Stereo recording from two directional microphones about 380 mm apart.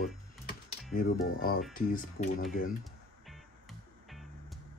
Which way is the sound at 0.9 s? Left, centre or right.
Left.